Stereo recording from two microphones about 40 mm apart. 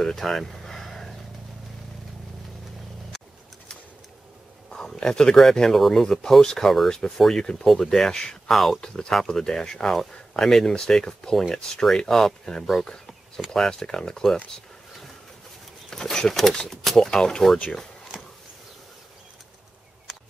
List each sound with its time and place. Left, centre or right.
0.0 s a sound: centre
4.6 s speech: centre
15.9 s speech: centre
17.1 s speech: centre